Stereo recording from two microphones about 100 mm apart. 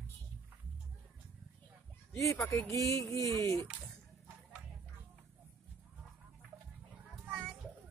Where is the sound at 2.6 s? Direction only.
30° left (ahead or behind).